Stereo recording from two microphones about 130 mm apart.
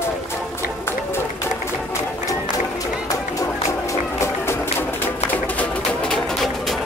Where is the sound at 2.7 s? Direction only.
25° left (ahead or behind); by 6.8 s centre (ahead or behind).